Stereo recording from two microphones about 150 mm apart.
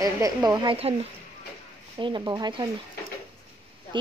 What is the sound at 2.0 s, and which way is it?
Speech, 30° right (ahead or behind).